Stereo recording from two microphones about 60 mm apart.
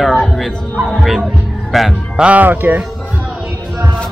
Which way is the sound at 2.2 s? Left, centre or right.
Right.